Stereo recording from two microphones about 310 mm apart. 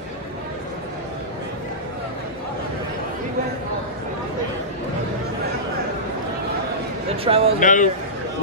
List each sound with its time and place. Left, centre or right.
7.2 s speech: centre
7.6 s a man's voice: left